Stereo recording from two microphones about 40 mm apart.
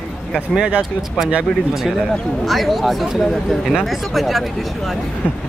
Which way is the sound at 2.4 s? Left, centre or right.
Centre.